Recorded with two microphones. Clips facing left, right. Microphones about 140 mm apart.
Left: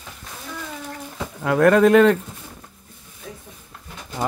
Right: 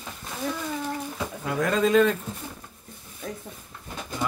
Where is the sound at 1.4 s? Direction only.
65° left (ahead or behind).